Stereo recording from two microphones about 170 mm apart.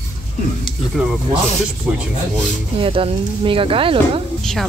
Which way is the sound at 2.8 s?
30° right (ahead or behind).